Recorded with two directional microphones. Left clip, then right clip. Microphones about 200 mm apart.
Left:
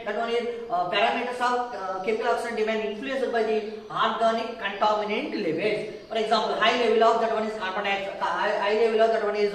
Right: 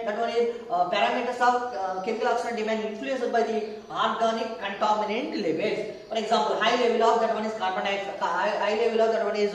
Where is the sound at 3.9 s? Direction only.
15° right (ahead or behind).